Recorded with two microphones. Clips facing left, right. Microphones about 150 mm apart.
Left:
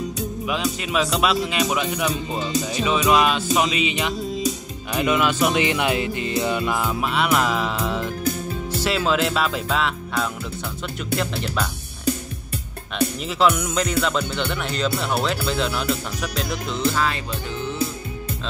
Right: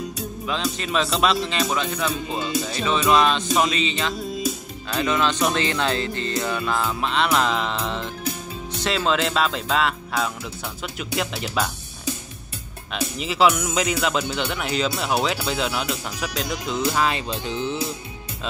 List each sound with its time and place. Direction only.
0.5 s speech: 10° left (ahead or behind)
12.9 s speech: 5° right (ahead or behind)
16.9 s music: 20° right (ahead or behind)